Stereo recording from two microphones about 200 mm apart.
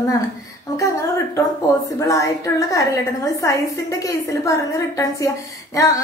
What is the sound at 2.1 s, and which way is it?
A woman's voice, 15° left (ahead or behind).